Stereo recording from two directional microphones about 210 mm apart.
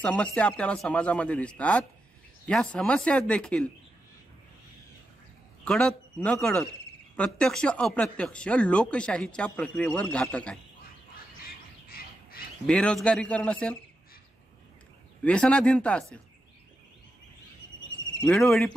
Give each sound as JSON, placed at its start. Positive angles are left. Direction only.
{"t": 0.0, "sound": "speech", "side_deg": 5}
{"t": 5.7, "sound": "speech", "side_deg": 5}
{"t": 11.4, "sound": "bird", "side_deg": 45}
{"t": 12.6, "sound": "speech", "side_deg": 5}
{"t": 15.2, "sound": "speech", "side_deg": 5}
{"t": 18.3, "sound": "speech", "side_deg": 0}